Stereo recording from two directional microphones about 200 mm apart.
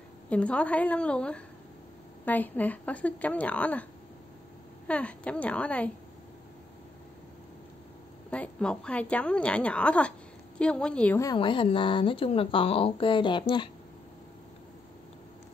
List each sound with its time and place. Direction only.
0.3 s a woman's voice: 5° left (ahead or behind)
4.8 s speech: 5° left (ahead or behind)
8.3 s a woman's voice: 5° left (ahead or behind)
11.3 s speech: 25° left (ahead or behind)